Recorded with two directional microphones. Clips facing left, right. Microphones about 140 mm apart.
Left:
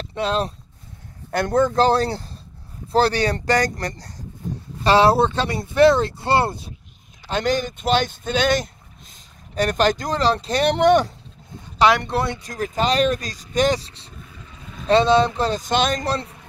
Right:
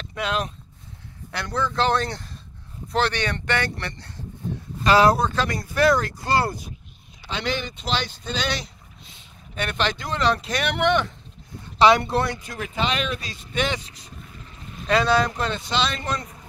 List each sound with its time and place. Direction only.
0.0 s speech: 35° left (ahead or behind)
1.3 s speech: 45° left (ahead or behind); by 6.7 s 25° left (ahead or behind)
7.2 s speech: 45° left (ahead or behind)
11.8 s speech: centre (ahead or behind)
12.4 s speech: 40° left (ahead or behind)